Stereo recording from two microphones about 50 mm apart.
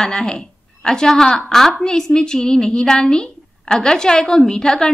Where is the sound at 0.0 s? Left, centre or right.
Centre.